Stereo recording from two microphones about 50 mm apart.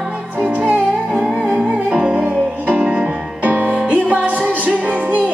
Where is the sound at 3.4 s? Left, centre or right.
Right.